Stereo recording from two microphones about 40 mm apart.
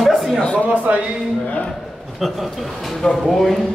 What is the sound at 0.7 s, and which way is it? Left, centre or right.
Speech, right.